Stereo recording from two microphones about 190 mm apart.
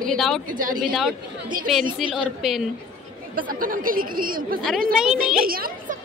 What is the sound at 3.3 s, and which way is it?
Speech, 45° right (ahead or behind).